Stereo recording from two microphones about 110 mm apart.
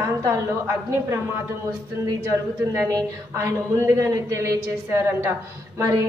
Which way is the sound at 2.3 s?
25° right (ahead or behind).